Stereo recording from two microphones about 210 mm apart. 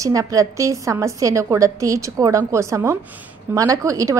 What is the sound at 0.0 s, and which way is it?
A woman's voice, 15° right (ahead or behind).